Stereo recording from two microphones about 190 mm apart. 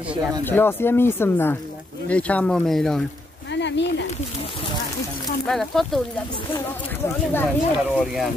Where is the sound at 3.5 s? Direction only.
70° left (ahead or behind).